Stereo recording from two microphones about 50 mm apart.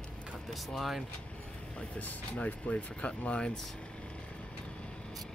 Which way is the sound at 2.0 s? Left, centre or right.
Left.